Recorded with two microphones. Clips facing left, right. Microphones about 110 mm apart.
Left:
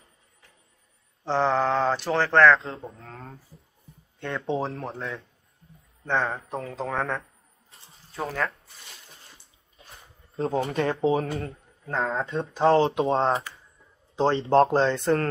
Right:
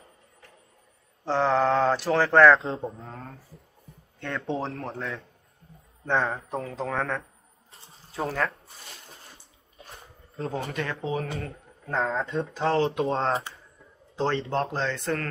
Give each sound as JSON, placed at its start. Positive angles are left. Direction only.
{"t": 1.2, "sound": "speech", "side_deg": 0}
{"t": 2.6, "sound": "speech", "side_deg": -25}
{"t": 4.2, "sound": "speech", "side_deg": 5}
{"t": 7.7, "sound": "a sound", "side_deg": 0}
{"t": 10.3, "sound": "speech", "side_deg": 30}
{"t": 11.9, "sound": "speech", "side_deg": 0}
{"t": 12.3, "sound": "speech", "side_deg": 25}